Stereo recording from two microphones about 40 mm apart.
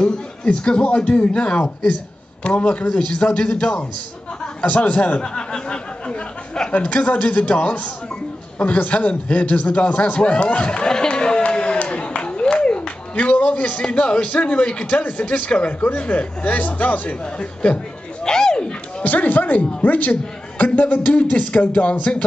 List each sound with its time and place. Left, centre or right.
0.0 s a man's voice: left
4.6 s a man's voice: left
5.2 s a man's voice: left
11.8 s a sound: left
13.1 s a man's voice: left
15.0 s a man's voice: left
17.4 s speech: left
18.2 s dog: centre
19.0 s a man's voice: left